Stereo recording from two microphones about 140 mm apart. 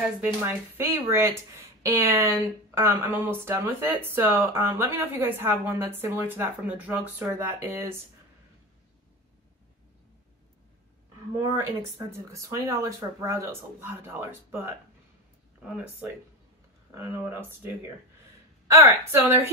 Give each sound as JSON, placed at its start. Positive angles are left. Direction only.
{"t": 0.2, "sound": "speech", "side_deg": -15}
{"t": 12.3, "sound": "speech", "side_deg": -20}